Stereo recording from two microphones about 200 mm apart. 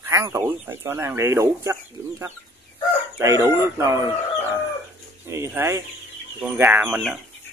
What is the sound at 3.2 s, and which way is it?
Speech, 15° right (ahead or behind).